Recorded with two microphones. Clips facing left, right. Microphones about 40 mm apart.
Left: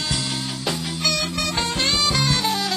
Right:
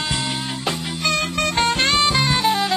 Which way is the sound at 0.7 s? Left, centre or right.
Right.